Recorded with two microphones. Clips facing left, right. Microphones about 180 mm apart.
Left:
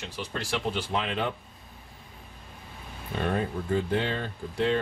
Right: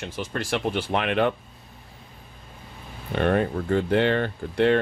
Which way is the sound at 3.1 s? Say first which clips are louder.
Right 6 dB; 70° right (ahead or behind).